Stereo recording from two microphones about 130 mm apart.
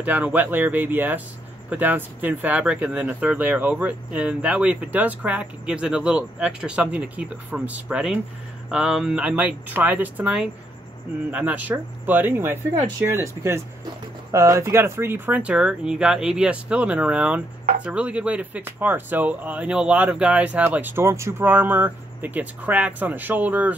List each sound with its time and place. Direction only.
0.0 s speech: 10° right (ahead or behind)